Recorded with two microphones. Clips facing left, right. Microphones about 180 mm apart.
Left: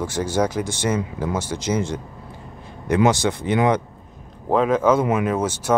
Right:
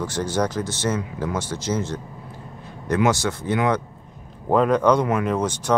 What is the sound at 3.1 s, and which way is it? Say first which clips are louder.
Speech: left 2 dB; 15° left (ahead or behind).